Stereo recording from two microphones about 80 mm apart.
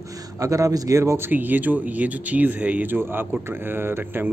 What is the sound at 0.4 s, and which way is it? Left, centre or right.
Speech, right.